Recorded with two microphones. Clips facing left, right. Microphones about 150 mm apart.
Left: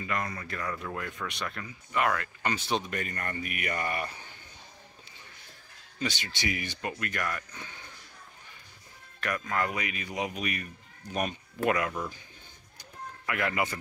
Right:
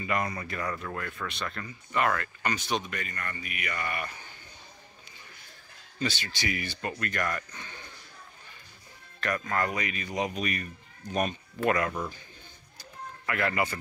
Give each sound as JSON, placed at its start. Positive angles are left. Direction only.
{"t": 0.0, "sound": "speech", "side_deg": -10}
{"t": 0.7, "sound": "speech", "side_deg": 15}
{"t": 2.4, "sound": "speech", "side_deg": 30}
{"t": 2.9, "sound": "speech", "side_deg": 45}
{"t": 5.9, "sound": "speech", "side_deg": 20}
{"t": 6.9, "sound": "speech", "side_deg": 10}
{"t": 9.2, "sound": "speech", "side_deg": 10}
{"t": 13.2, "sound": "speech", "side_deg": 15}